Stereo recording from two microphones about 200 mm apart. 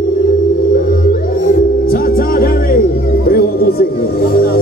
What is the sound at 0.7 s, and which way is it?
Music, 45° left (ahead or behind).